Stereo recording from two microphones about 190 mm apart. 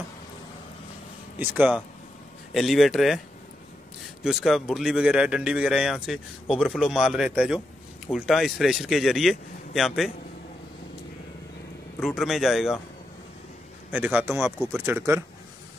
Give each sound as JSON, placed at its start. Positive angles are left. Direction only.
{"t": 1.4, "sound": "speech", "side_deg": -10}
{"t": 4.2, "sound": "speech", "side_deg": -5}
{"t": 12.0, "sound": "speech", "side_deg": 0}
{"t": 13.9, "sound": "speech", "side_deg": -10}